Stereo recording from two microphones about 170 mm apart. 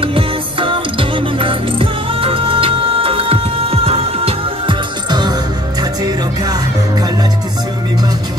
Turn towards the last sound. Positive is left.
turn(degrees=-20)  # may be behind; listen again after turning